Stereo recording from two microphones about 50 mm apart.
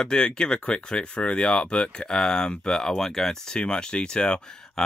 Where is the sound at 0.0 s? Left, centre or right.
Centre.